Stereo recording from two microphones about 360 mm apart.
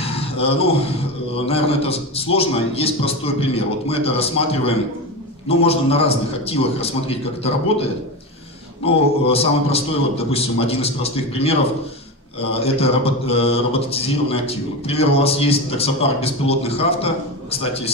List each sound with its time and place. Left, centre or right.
0.0 s a sound: centre
1.4 s mantra: centre
8.8 s mantra: centre